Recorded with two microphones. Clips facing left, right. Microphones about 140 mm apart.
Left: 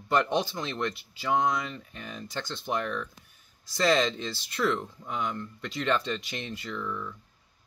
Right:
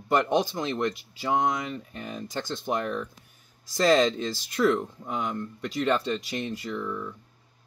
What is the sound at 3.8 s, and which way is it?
Speech, 45° right (ahead or behind).